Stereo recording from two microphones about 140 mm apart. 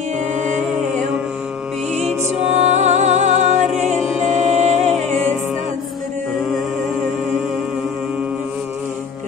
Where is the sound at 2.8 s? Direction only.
55° right (ahead or behind).